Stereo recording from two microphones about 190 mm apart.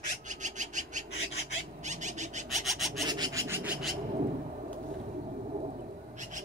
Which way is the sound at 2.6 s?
Centre (ahead or behind).